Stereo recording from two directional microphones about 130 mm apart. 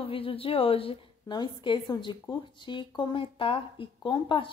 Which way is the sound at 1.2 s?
35° left (ahead or behind).